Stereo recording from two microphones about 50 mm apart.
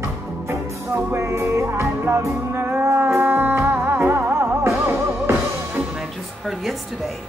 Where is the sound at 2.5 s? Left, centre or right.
Right.